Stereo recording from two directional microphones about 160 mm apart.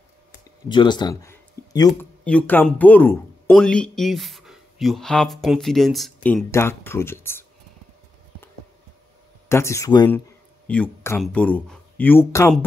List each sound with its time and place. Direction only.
0.7 s speech: 30° left (ahead or behind)
1.3 s a sound: 20° left (ahead or behind)
2.2 s speech: 10° left (ahead or behind)
6.2 s speech: 10° left (ahead or behind)
9.5 s speech: 15° left (ahead or behind)
10.7 s speech: 10° left (ahead or behind)